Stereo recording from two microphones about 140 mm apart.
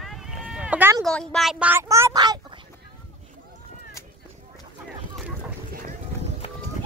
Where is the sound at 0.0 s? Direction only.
Centre (ahead or behind).